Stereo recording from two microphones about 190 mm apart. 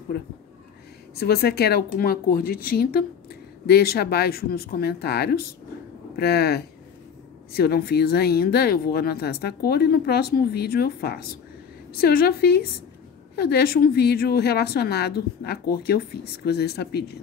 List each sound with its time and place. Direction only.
0.1 s a woman's voice: 60° left (ahead or behind)